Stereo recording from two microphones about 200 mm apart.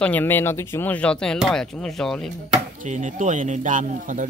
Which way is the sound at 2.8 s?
40° right (ahead or behind).